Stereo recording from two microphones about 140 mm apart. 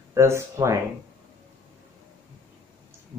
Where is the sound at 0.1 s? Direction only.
20° right (ahead or behind).